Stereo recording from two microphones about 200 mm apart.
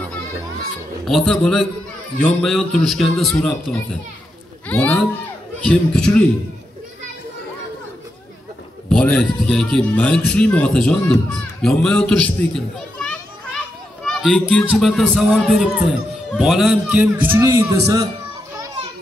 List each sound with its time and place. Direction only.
1.0 s speech: centre (ahead or behind)
8.8 s speech: 5° left (ahead or behind); by 18.0 s 15° right (ahead or behind)